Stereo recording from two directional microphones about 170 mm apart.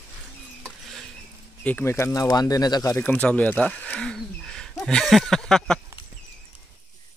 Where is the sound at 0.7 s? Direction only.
Centre (ahead or behind).